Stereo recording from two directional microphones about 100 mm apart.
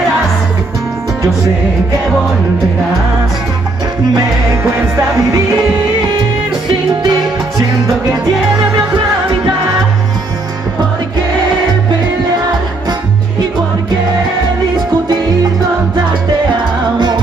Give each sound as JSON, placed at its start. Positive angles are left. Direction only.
{"t": 7.0, "sound": "music", "side_deg": -45}